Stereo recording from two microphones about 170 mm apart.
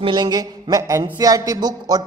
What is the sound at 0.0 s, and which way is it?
Speech, 25° right (ahead or behind).